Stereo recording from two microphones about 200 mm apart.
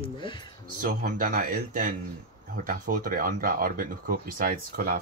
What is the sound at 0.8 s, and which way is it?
Speech, 45° right (ahead or behind).